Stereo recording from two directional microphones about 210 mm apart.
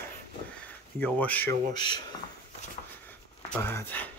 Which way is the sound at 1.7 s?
20° left (ahead or behind).